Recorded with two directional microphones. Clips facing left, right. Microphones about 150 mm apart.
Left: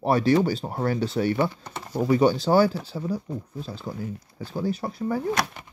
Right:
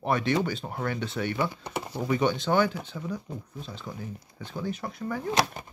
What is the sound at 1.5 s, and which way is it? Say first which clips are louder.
Speech: right 4 dB; 15° right (ahead or behind).